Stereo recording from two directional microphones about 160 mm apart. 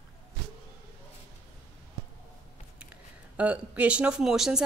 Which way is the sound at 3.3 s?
10° right (ahead or behind).